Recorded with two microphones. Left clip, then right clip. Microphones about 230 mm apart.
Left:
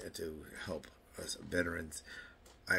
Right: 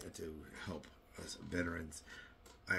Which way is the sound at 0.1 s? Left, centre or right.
Centre.